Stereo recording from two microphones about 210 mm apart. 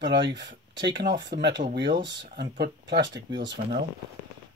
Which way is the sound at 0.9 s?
55° right (ahead or behind).